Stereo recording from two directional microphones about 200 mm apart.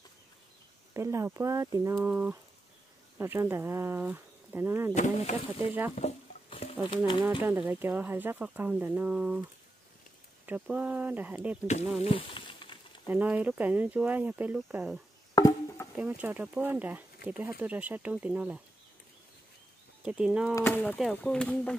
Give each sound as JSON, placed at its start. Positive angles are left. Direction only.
{"t": 0.9, "sound": "speech", "side_deg": -15}
{"t": 4.9, "sound": "speech", "side_deg": 35}
{"t": 5.9, "sound": "stir", "side_deg": 30}
{"t": 7.4, "sound": "speech", "side_deg": -10}
{"t": 10.4, "sound": "speech", "side_deg": -5}
{"t": 12.0, "sound": "speech", "side_deg": 30}
{"t": 13.0, "sound": "speech", "side_deg": -10}
{"t": 15.3, "sound": "chop", "side_deg": 15}
{"t": 16.0, "sound": "speech", "side_deg": -5}
{"t": 20.0, "sound": "speech", "side_deg": -5}
{"t": 20.5, "sound": "speech", "side_deg": 10}